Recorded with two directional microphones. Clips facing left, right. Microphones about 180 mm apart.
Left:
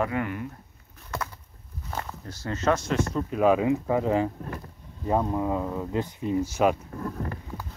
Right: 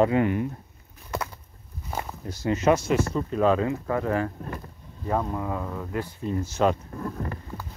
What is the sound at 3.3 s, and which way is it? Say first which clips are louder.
Speech: left 1 dB; 10° left (ahead or behind).